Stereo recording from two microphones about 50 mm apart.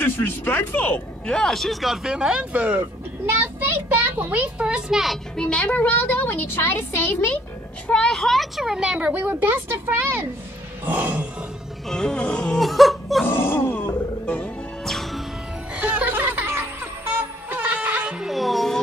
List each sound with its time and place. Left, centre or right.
0.5 s a woman's voice: left
1.2 s a child's voice: centre
5.4 s a woman's voice: centre; by 7.3 s left
7.9 s speech: centre
8.7 s speech: centre
9.1 s a woman's voice: right
10.9 s speech: centre
11.9 s music: centre
13.3 s groan: left
13.8 s music: left
14.9 s music: centre
15.7 s music: centre
16.4 s music: right
17.5 s music: centre